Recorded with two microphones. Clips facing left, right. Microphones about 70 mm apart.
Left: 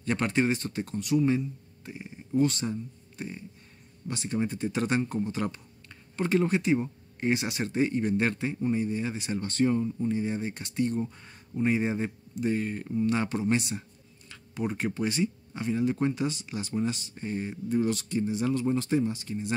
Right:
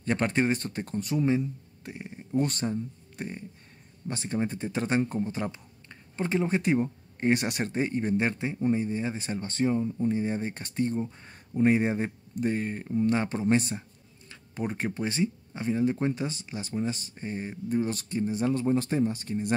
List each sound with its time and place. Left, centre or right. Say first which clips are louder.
0.0 s speech: even; right
1.8 s speech: right 1 dB; right
4.1 s a man's voice: even; right
6.6 s speech: right 1 dB; right
7.7 s a man's voice: left 3 dB; right
9.7 s speech: even; centre
10.0 s speech: right 1 dB; right
11.1 s a sound: right 3 dB; right
11.6 s a man's voice: right 3 dB; right